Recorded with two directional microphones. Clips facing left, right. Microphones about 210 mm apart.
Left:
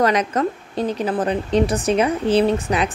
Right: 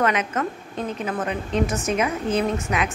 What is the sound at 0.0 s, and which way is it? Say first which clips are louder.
A woman's voice: left 4 dB; 35° left (ahead or behind).